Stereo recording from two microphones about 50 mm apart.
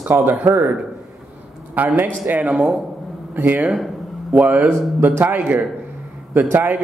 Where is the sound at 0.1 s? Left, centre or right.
Right.